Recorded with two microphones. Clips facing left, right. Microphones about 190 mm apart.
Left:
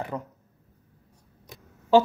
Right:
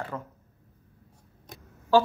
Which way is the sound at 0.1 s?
15° left (ahead or behind).